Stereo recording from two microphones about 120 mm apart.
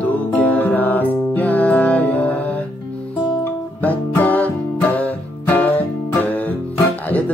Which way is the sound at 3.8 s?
15° left (ahead or behind).